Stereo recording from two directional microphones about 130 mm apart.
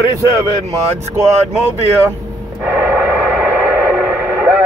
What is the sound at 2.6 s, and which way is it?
Radio, 15° right (ahead or behind).